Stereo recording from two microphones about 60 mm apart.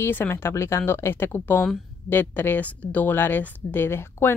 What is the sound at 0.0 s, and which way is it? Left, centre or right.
Speech, left.